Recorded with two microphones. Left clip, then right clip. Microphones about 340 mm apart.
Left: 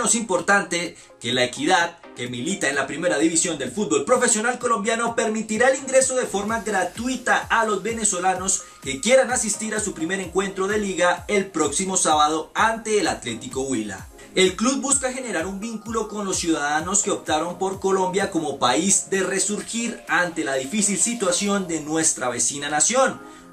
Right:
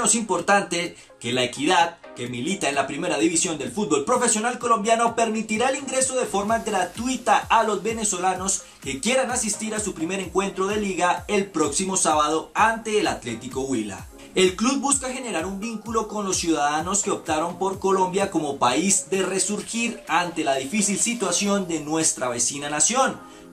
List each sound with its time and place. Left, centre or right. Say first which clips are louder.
0.0 s speech: left 1 dB; centre
8.8 s speech: left 5 dB; centre
14.3 s speech: left 1 dB; centre